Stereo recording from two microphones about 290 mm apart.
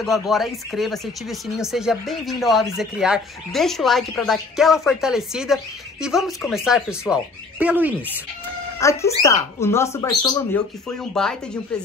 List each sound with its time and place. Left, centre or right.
0.0 s speech: centre
8.7 s speech: centre